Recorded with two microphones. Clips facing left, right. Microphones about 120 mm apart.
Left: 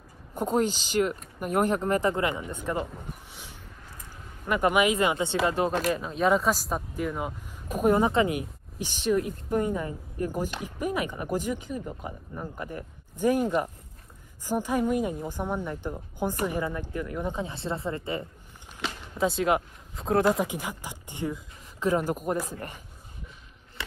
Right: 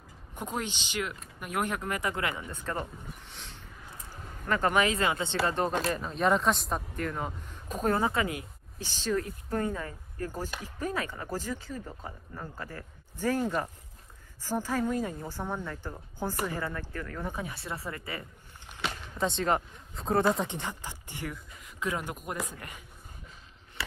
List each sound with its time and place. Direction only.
0.3 s speech: 40° left (ahead or behind); by 2.9 s 10° left (ahead or behind)
3.3 s a sound: 10° left (ahead or behind)
4.5 s speech: 15° left (ahead or behind)
19.1 s speech: 5° left (ahead or behind)
21.7 s speech: 35° left (ahead or behind)